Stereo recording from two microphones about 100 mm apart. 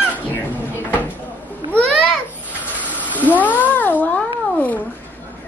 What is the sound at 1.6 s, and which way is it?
Babbling, 10° left (ahead or behind).